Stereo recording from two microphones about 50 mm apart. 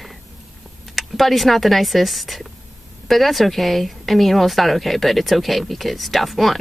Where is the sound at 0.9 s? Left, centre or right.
Centre.